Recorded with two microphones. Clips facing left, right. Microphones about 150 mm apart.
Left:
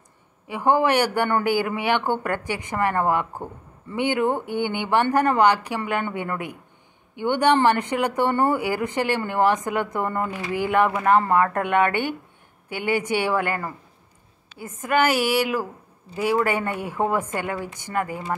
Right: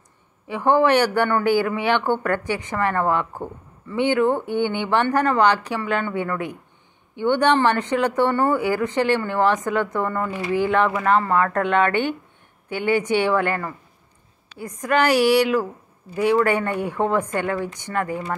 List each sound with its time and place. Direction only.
0.5 s speech: 15° left (ahead or behind)
14.9 s speech: 5° left (ahead or behind)